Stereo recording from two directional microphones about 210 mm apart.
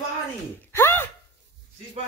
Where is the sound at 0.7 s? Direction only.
10° left (ahead or behind).